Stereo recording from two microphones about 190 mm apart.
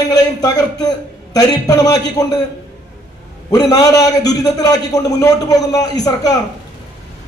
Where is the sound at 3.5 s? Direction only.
20° left (ahead or behind).